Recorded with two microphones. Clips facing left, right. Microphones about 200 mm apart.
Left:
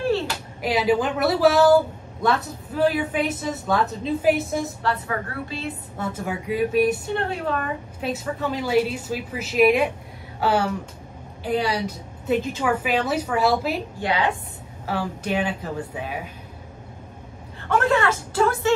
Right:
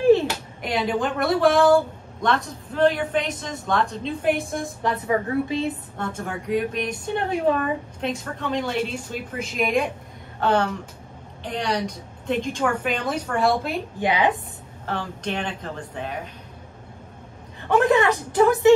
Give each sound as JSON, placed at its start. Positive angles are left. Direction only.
{"t": 0.6, "sound": "a woman's voice", "side_deg": 5}
{"t": 4.8, "sound": "a woman's voice", "side_deg": -20}
{"t": 5.9, "sound": "speech", "side_deg": 5}
{"t": 7.2, "sound": "a woman's voice", "side_deg": -20}
{"t": 8.0, "sound": "a woman's voice", "side_deg": 5}
{"t": 13.9, "sound": "a woman's voice", "side_deg": -20}
{"t": 14.9, "sound": "speech", "side_deg": 10}
{"t": 17.6, "sound": "a woman's voice", "side_deg": -20}